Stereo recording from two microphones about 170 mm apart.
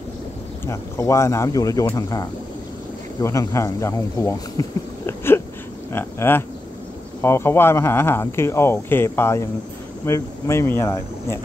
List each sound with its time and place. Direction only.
0.7 s speech: 15° left (ahead or behind)